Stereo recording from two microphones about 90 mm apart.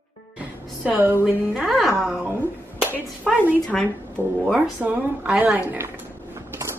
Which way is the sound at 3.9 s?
25° right (ahead or behind).